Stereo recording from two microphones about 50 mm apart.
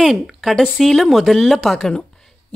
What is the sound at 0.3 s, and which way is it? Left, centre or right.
Speech, centre.